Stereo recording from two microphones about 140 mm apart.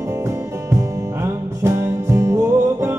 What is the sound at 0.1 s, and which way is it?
Music, 20° right (ahead or behind).